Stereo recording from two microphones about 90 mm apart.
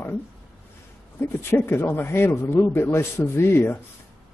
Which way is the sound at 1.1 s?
25° left (ahead or behind).